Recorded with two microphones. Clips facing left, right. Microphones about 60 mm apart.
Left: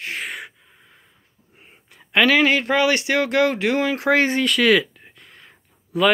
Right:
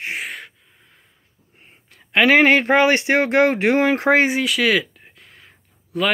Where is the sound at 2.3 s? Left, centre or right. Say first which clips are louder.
Right 7 dB; right.